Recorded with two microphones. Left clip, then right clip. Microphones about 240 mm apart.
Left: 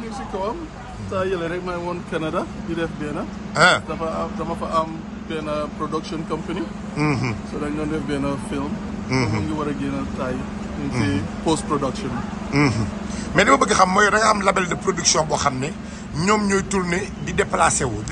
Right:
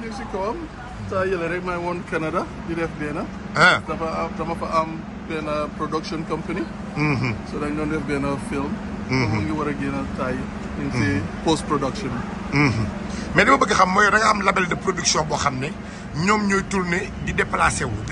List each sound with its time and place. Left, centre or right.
1.9 s a man's voice: centre
5.5 s a man's voice: centre
9.1 s a man's voice: centre
11.0 s a man's voice: centre